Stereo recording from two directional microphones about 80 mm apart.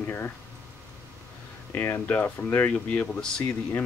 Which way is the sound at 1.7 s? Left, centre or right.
Left.